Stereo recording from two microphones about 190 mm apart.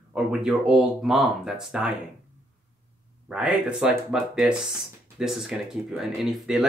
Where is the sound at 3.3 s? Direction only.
5° right (ahead or behind).